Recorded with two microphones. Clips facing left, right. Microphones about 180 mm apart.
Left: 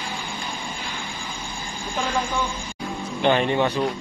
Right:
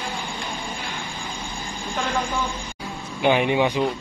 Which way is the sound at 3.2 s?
10° right (ahead or behind).